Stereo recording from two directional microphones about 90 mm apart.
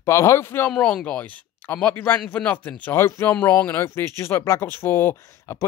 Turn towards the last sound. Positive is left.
turn(degrees=30)  # may be behind; listen again after turning